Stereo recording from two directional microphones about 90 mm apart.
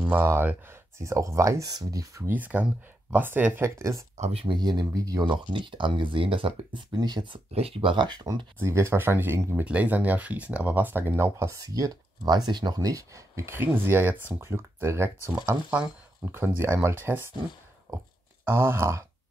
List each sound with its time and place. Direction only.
0.0 s speech: 15° right (ahead or behind)
0.3 s speech: 25° right (ahead or behind)
2.2 s speech: 20° right (ahead or behind)
3.6 s speech: 35° right (ahead or behind)
4.6 s speech: 50° right (ahead or behind)
5.2 s speech: 60° right (ahead or behind); by 6.8 s 75° right (ahead or behind)
7.0 s speech: 50° right (ahead or behind)
7.6 s speech: 85° right; by 8.5 s 55° right (ahead or behind)
8.5 s speech: 30° right (ahead or behind)
9.7 s speech: 20° right (ahead or behind)
18.5 s speech: 30° right (ahead or behind)